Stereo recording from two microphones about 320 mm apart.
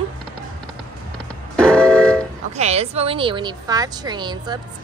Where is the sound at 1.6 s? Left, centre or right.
Centre.